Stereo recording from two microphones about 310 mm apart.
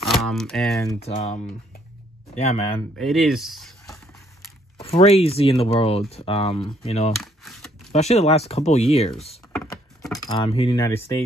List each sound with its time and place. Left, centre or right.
0.0 s speech: centre
0.9 s speech: left
3.0 s speech: centre
4.7 s speech: centre
7.2 s a sound: centre
7.9 s speech: left
9.5 s keys jangling: centre